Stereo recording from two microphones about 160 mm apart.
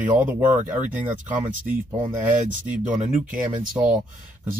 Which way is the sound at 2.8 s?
50° right (ahead or behind).